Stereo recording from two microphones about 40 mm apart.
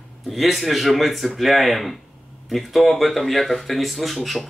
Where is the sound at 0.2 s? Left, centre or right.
Centre.